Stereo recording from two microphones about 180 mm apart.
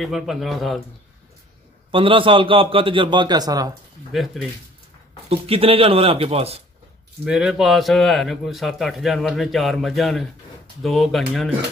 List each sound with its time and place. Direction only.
0.0 s a man's voice: centre (ahead or behind)
1.9 s a man's voice: 30° right (ahead or behind)
4.1 s a man's voice: centre (ahead or behind)
5.3 s speech: 30° right (ahead or behind)
7.2 s a man's voice: centre (ahead or behind)